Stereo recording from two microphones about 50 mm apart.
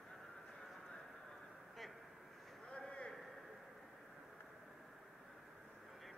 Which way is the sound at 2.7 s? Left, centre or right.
Left.